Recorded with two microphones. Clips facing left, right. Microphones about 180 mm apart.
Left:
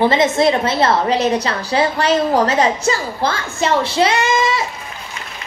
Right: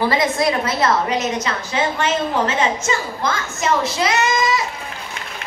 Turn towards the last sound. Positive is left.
turn(degrees=30)  # may be behind; listen again after turning